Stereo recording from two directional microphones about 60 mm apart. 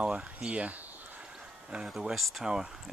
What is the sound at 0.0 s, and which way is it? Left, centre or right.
Speech, centre.